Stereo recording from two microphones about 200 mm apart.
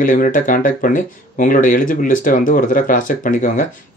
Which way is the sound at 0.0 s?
40° left (ahead or behind).